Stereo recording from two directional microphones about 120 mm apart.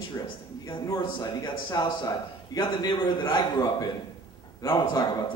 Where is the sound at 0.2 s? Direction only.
30° left (ahead or behind).